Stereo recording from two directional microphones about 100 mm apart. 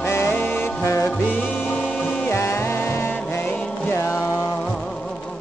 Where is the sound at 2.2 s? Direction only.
25° left (ahead or behind).